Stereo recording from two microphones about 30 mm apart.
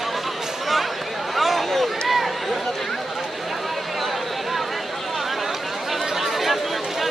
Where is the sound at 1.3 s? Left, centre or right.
Centre.